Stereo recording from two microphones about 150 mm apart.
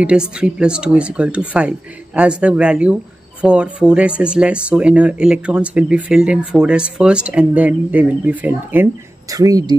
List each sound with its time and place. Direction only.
0.0 s speech: 5° right (ahead or behind)
9.3 s speech: 25° right (ahead or behind)